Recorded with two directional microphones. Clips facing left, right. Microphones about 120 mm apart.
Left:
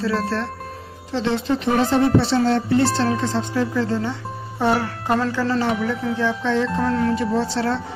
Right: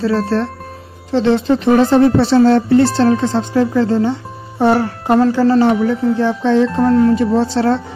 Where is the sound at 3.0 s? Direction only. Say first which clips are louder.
Right 8 dB; 50° right (ahead or behind).